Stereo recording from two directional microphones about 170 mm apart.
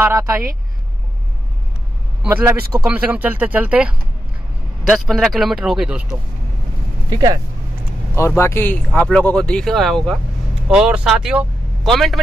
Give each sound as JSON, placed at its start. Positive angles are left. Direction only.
{"t": 0.0, "sound": "speech", "side_deg": -15}
{"t": 2.8, "sound": "speech", "side_deg": -10}
{"t": 4.9, "sound": "speech", "side_deg": 0}
{"t": 7.1, "sound": "speech", "side_deg": -20}
{"t": 8.2, "sound": "speech", "side_deg": 15}